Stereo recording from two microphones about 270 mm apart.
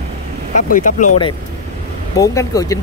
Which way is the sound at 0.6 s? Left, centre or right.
Left.